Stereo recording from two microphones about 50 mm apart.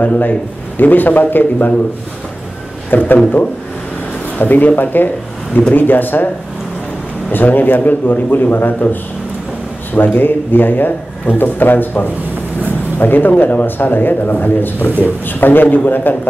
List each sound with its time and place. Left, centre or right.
0.0 s speech: left
2.9 s speech: left
4.4 s speech: left
9.9 s speech: left